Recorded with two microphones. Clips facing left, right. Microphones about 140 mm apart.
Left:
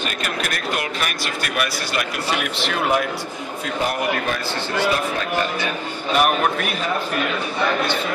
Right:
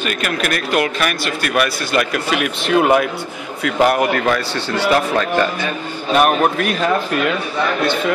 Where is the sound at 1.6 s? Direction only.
60° right (ahead or behind).